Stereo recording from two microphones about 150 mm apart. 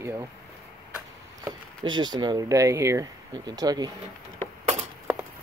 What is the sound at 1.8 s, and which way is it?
Speech, 30° right (ahead or behind).